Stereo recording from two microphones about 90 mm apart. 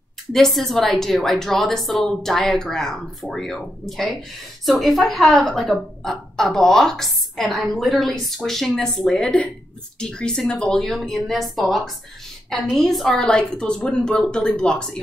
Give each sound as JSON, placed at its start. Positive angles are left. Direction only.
{"t": 0.3, "sound": "a woman's voice", "side_deg": 5}